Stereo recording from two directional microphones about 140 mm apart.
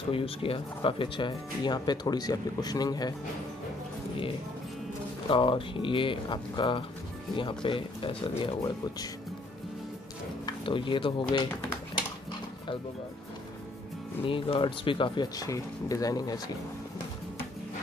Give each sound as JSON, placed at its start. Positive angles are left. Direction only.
{"t": 0.1, "sound": "speech", "side_deg": 40}
{"t": 5.3, "sound": "speech", "side_deg": 35}
{"t": 10.4, "sound": "speech", "side_deg": 35}
{"t": 14.2, "sound": "speech", "side_deg": 40}